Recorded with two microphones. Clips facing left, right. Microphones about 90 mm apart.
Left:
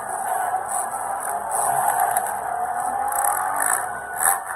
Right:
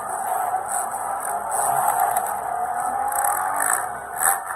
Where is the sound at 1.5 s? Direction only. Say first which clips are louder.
Even; 20° left (ahead or behind).